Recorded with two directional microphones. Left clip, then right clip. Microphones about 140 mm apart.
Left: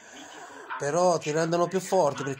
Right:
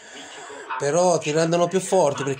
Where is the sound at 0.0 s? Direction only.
10° left (ahead or behind).